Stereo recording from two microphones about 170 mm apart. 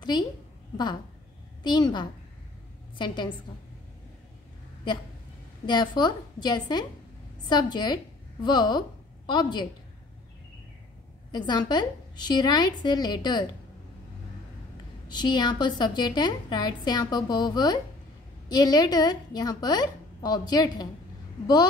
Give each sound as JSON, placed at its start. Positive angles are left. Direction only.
{"t": 0.1, "sound": "a woman's voice", "side_deg": 25}
{"t": 1.6, "sound": "a woman's voice", "side_deg": 25}
{"t": 5.7, "sound": "a woman's voice", "side_deg": 25}
{"t": 11.3, "sound": "a woman's voice", "side_deg": 25}
{"t": 15.0, "sound": "a woman's voice", "side_deg": 25}